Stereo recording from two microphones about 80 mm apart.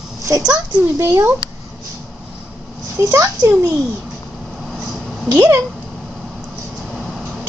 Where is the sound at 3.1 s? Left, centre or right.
Right.